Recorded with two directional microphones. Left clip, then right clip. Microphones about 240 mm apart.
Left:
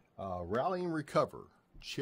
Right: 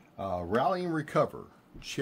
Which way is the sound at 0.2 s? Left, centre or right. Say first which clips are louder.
Right 6 dB; left.